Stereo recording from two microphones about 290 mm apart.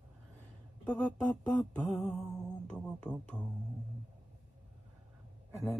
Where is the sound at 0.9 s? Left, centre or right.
Centre.